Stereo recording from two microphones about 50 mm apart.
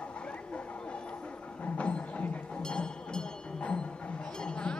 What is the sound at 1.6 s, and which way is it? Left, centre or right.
Music, left.